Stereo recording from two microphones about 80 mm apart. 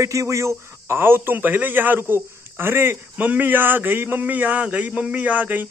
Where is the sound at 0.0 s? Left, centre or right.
Right.